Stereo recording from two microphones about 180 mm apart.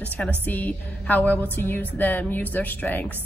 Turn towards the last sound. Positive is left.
turn(degrees=10)  # may be behind; listen again after turning